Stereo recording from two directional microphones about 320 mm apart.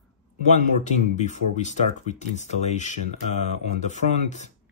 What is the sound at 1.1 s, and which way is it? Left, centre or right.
Speech, left.